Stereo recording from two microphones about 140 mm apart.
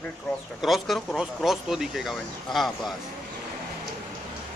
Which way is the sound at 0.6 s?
Centre (ahead or behind).